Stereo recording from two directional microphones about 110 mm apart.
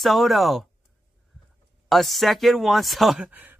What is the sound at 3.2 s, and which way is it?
Speech, 15° right (ahead or behind).